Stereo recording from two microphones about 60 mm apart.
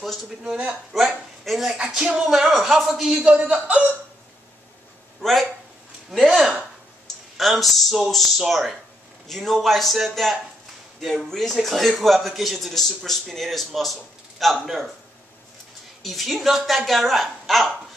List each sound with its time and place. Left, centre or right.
0.4 s a man's voice: centre
0.9 s a man's voice: centre
3.2 s a man's voice: right
5.2 s speech: centre
6.0 s a sound: centre
7.3 s a man's voice: centre
16.0 s a man's voice: centre